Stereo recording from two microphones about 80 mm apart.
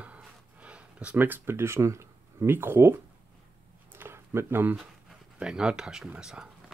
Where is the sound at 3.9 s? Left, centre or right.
Right.